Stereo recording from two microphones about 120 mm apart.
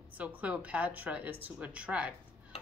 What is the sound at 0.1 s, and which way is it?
Speech, 15° right (ahead or behind).